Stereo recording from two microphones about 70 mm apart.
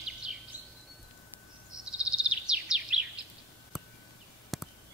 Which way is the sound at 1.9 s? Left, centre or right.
Centre.